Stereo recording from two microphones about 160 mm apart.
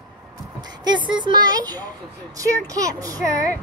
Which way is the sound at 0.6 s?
30° right (ahead or behind).